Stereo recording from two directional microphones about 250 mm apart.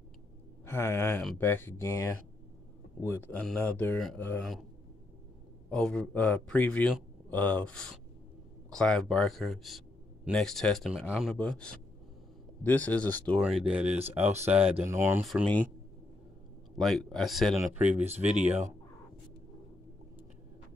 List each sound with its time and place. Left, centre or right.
0.7 s speech: centre
5.7 s speech: centre
16.7 s speech: centre
17.6 s speech: centre
18.0 s speech: right